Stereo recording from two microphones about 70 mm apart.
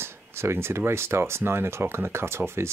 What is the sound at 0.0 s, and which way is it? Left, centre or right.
Speech, right.